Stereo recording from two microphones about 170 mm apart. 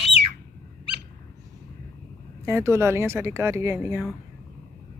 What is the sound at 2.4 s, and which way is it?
Speech, 15° right (ahead or behind).